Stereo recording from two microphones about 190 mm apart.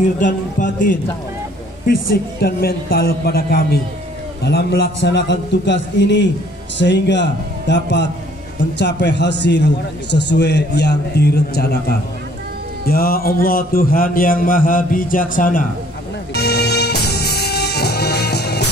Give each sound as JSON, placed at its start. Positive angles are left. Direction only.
{"t": 0.2, "sound": "a man's voice", "side_deg": 45}
{"t": 2.4, "sound": "a man's voice", "side_deg": 55}
{"t": 12.8, "sound": "a man's voice", "side_deg": 50}
{"t": 16.3, "sound": "music", "side_deg": 60}